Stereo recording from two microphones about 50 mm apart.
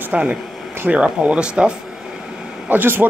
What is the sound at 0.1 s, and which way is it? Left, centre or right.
Speech, right.